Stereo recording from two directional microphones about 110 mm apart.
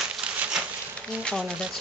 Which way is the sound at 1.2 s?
5° left (ahead or behind).